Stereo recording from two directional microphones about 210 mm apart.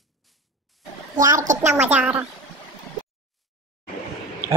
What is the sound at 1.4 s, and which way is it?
Speech, 35° right (ahead or behind).